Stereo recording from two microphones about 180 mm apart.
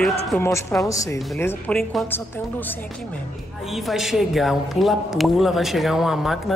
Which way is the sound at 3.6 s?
Centre (ahead or behind).